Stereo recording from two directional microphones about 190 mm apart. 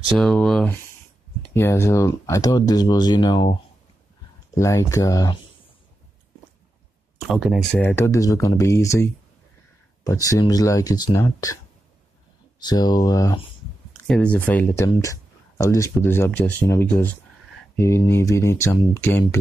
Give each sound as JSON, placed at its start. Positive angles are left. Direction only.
{"t": 0.1, "sound": "speech", "side_deg": 5}
{"t": 4.6, "sound": "speech", "side_deg": 15}
{"t": 7.2, "sound": "speech", "side_deg": -5}
{"t": 7.7, "sound": "speech", "side_deg": 10}
{"t": 12.5, "sound": "speech", "side_deg": 20}
{"t": 14.0, "sound": "speech", "side_deg": 5}